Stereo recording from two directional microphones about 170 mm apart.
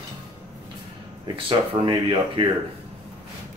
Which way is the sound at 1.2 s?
30° right (ahead or behind).